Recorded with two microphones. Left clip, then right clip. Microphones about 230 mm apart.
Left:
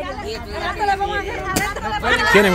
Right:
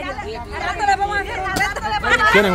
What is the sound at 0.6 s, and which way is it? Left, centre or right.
Chatter, right.